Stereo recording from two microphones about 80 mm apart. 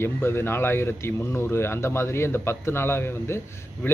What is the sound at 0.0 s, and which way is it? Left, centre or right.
Speech, left.